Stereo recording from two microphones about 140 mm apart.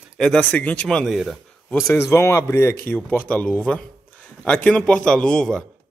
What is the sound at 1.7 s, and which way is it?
Speech, 20° left (ahead or behind).